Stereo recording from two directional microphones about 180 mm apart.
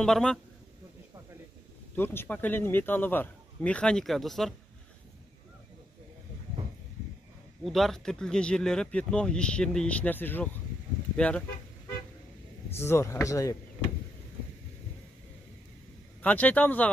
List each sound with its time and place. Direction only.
0.0 s speech: 5° left (ahead or behind)
2.0 s a man's voice: 10° left (ahead or behind)
7.6 s a man's voice: centre (ahead or behind)
12.7 s a man's voice: 15° left (ahead or behind)
16.2 s a man's voice: 10° left (ahead or behind)